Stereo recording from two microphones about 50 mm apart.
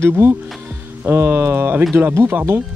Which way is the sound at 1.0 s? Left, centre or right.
Right.